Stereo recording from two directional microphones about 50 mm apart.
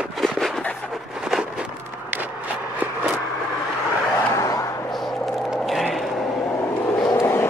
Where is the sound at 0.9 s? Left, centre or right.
Centre.